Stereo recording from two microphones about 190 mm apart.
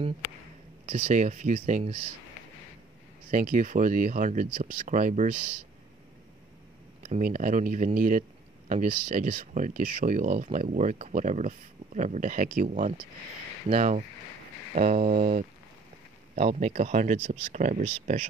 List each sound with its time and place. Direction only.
0.8 s speech: 35° right (ahead or behind)
3.3 s speech: 45° right (ahead or behind)
7.0 s speech: 40° right (ahead or behind)